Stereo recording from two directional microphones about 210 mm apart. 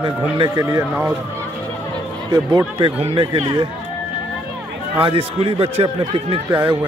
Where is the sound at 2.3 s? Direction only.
20° right (ahead or behind).